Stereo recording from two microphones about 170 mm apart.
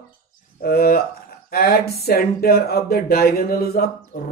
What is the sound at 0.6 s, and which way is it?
Speech, 60° left (ahead or behind).